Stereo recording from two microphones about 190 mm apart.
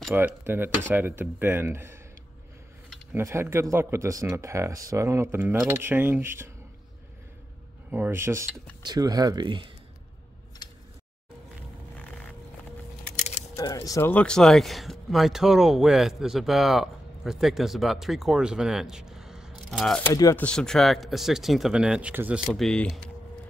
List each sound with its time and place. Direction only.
0.1 s speech: 10° right (ahead or behind)
7.9 s speech: 10° right (ahead or behind)
13.1 s keys jangling: 40° left (ahead or behind)
13.6 s speech: 20° left (ahead or behind); by 20.1 s centre (ahead or behind)
20.2 s speech: 15° left (ahead or behind)
20.4 s speech: 5° left (ahead or behind)
22.5 s speech: 5° left (ahead or behind)